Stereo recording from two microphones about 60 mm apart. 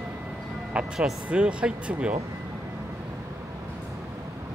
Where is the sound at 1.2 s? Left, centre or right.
Centre.